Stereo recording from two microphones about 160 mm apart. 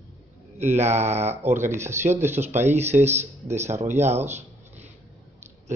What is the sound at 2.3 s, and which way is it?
Speech, 45° right (ahead or behind).